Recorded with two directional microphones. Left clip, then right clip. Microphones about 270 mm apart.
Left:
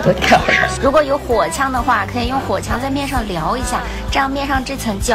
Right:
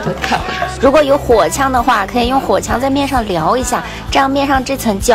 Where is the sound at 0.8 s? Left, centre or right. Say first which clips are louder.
Right 9 dB; right.